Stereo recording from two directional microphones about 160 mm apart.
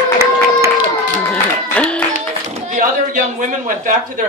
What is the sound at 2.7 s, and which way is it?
Speech, 50° right (ahead or behind).